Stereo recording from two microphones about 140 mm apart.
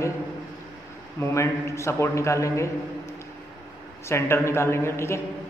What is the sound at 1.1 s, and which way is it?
A man's voice, 20° left (ahead or behind).